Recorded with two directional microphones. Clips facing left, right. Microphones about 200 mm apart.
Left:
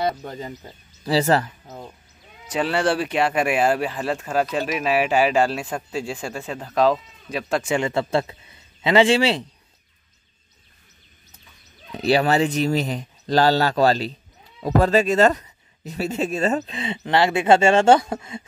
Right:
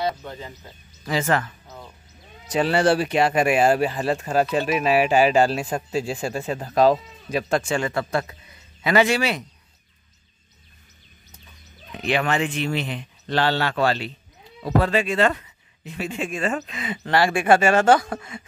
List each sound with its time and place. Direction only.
0.2 s speech: 40° left (ahead or behind)
2.9 s speech: centre (ahead or behind)
3.9 s speech: 30° right (ahead or behind)
4.8 s speech: centre (ahead or behind)
5.3 s speech: 35° right (ahead or behind)
7.6 s a man's voice: 20° left (ahead or behind)
11.9 s speech: 35° left (ahead or behind)